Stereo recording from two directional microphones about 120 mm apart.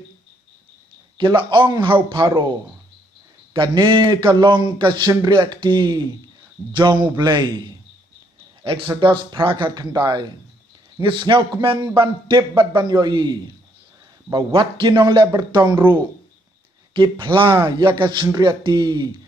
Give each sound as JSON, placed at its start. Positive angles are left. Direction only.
{"t": 1.1, "sound": "a man's voice", "side_deg": -40}
{"t": 3.5, "sound": "a man's voice", "side_deg": -40}